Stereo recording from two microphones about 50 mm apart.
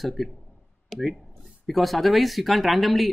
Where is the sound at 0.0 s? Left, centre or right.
Centre.